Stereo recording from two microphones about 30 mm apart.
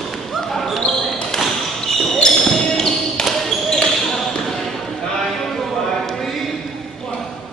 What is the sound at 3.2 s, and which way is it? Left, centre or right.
Basketball bounce, centre.